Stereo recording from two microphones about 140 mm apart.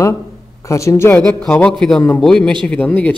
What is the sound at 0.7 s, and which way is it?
Speech, 20° left (ahead or behind).